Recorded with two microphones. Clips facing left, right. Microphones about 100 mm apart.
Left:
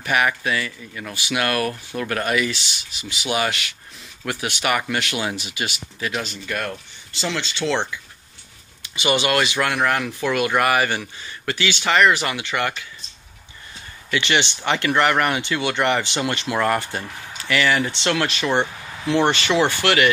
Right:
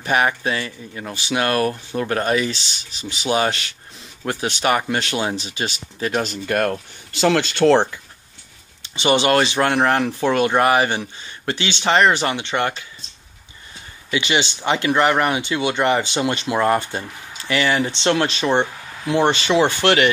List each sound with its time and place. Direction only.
0.0 s speech: 30° right (ahead or behind)
8.8 s speech: 30° right (ahead or behind)
14.1 s speech: 15° right (ahead or behind)